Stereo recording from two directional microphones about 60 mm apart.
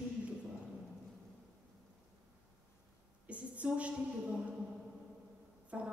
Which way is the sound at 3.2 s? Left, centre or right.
Right.